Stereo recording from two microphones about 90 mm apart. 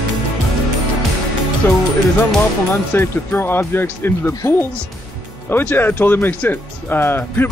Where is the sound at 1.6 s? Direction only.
25° left (ahead or behind).